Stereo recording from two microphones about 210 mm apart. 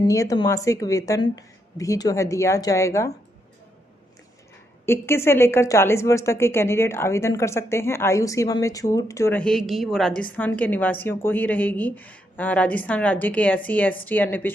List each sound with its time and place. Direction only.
0.0 s a woman's voice: 15° left (ahead or behind)
4.8 s a woman's voice: 10° left (ahead or behind)